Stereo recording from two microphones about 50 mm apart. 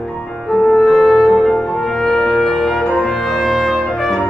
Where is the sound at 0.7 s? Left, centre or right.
Centre.